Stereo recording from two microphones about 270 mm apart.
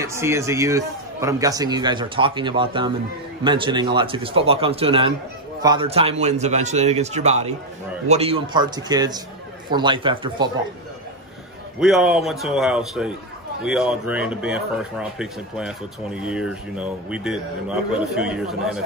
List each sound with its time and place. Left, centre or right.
0.0 s a man's voice: centre
11.8 s a man's voice: centre